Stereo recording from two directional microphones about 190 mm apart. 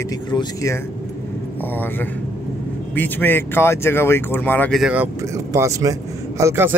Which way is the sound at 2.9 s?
10° left (ahead or behind).